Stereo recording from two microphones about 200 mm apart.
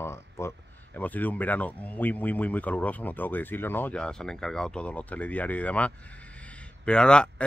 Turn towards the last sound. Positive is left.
turn(degrees=5)  # may be behind; listen again after turning